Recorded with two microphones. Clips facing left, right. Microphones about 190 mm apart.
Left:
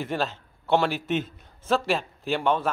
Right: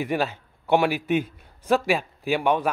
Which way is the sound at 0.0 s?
15° right (ahead or behind).